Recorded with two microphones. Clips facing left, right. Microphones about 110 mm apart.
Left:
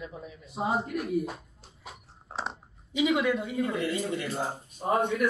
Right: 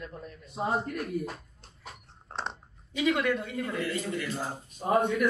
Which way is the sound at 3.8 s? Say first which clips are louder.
Left 2 dB; 25° left (ahead or behind).